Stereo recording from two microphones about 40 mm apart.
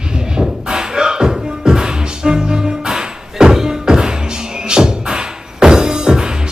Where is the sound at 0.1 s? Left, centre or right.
Centre.